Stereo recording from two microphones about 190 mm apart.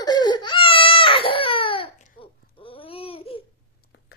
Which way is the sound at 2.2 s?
30° left (ahead or behind).